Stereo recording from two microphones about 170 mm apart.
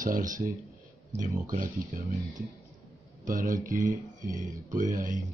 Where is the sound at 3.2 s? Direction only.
50° right (ahead or behind).